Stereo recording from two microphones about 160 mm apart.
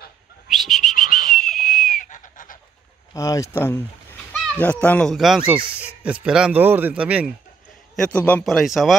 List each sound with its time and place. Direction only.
0.5 s whistling: centre (ahead or behind)
1.0 s a sound: 60° left (ahead or behind)
1.3 s a sound: 5° left (ahead or behind)
2.0 s goose: 55° left (ahead or behind)
3.2 s speech: 20° left (ahead or behind)
5.1 s speech: centre (ahead or behind)
7.9 s speech: 5° left (ahead or behind)